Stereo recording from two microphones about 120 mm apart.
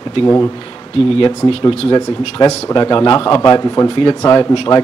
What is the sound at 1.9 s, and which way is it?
Speech, 35° left (ahead or behind).